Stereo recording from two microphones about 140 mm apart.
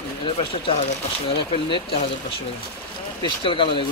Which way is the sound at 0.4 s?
40° left (ahead or behind).